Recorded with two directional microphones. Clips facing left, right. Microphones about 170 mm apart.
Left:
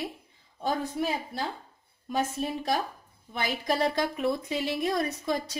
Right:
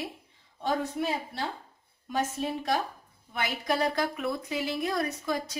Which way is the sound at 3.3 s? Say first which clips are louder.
Left 1 dB; 30° left (ahead or behind).